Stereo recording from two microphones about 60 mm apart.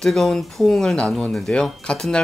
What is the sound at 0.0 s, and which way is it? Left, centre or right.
Speech, centre.